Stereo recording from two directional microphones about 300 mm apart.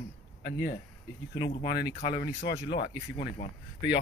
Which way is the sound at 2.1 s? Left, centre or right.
Left.